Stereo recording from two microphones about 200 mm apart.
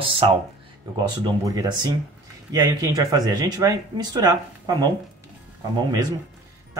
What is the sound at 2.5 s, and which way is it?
Speech, 20° right (ahead or behind).